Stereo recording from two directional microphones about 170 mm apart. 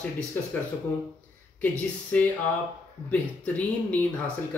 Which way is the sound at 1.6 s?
10° left (ahead or behind).